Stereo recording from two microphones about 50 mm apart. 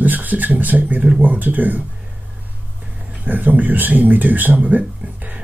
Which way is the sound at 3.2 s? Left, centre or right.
Right.